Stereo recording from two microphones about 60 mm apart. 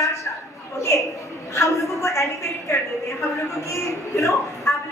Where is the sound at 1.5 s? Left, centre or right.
Left.